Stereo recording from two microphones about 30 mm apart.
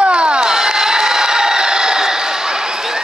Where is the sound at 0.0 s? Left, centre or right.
Right.